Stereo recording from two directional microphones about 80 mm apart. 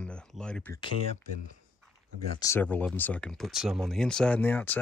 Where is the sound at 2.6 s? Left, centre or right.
Centre.